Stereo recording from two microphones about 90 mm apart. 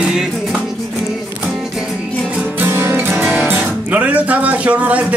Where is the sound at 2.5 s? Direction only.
25° right (ahead or behind).